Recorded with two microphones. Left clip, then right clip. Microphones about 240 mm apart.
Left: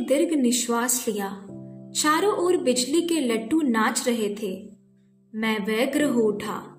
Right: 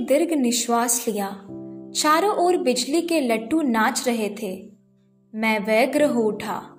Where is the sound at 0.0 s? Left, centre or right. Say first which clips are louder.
Right 2 dB; centre.